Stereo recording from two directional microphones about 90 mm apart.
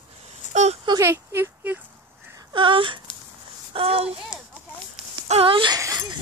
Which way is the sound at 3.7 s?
90° right.